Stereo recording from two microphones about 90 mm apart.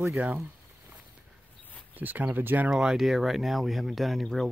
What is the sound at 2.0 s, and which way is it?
Speech, 20° right (ahead or behind).